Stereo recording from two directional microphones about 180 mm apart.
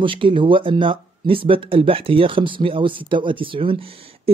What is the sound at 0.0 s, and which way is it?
Speech, 30° right (ahead or behind).